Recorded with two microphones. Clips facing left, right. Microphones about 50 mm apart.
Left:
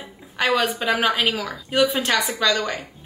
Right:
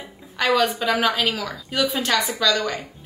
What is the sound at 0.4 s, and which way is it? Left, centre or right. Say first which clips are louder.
A woman's voice: right 1 dB; centre.